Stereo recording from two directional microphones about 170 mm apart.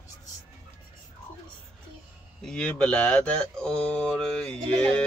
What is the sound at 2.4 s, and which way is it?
Speech, 5° left (ahead or behind).